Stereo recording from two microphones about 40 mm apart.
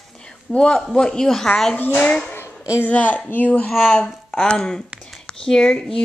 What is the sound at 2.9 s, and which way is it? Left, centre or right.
Speech, left.